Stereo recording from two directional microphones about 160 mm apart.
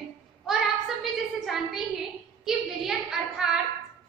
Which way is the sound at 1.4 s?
Centre (ahead or behind).